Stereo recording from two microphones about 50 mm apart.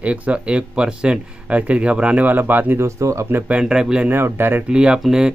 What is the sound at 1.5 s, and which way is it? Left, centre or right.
Speech, right.